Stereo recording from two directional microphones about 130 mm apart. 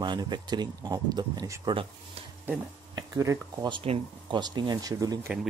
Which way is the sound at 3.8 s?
50° right (ahead or behind).